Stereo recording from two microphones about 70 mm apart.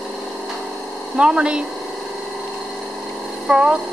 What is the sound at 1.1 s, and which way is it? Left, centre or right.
Speech, centre.